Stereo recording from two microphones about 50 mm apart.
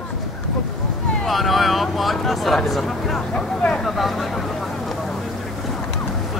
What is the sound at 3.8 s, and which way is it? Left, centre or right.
Speech, centre.